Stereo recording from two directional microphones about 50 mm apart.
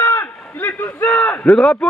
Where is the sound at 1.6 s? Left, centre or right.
Centre.